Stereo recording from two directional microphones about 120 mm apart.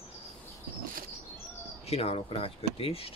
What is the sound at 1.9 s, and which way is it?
Speech, 60° left (ahead or behind).